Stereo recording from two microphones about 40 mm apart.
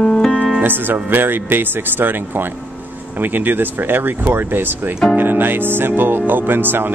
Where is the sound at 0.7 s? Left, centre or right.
Right.